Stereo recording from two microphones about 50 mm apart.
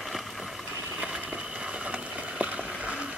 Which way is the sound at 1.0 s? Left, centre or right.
Centre.